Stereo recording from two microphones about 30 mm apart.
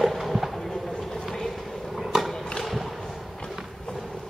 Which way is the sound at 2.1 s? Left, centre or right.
Centre.